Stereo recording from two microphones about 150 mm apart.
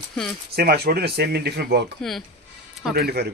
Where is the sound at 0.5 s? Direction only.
90° right.